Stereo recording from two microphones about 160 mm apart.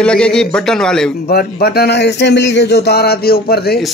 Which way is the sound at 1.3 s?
80° left.